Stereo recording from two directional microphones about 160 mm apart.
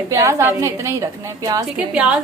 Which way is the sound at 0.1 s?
20° right (ahead or behind).